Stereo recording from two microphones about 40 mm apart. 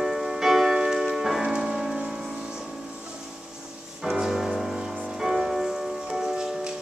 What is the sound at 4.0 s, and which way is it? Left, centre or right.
Music, centre.